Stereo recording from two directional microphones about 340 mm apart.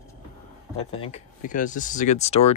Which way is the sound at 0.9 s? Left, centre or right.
Centre.